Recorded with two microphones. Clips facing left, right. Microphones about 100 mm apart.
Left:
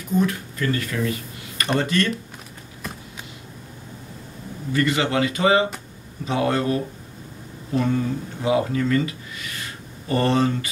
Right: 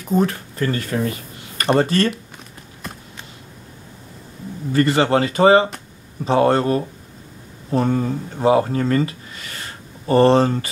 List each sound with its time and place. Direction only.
0.2 s speech: 35° right (ahead or behind)
4.7 s speech: 35° right (ahead or behind)